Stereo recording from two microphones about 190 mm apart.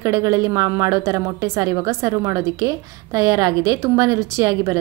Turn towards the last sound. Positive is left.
turn(degrees=-20)  # may be behind; listen again after turning